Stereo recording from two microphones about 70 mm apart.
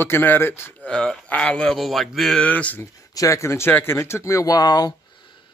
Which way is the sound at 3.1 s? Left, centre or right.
Left.